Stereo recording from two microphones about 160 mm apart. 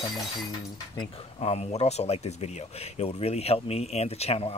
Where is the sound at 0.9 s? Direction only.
40° left (ahead or behind).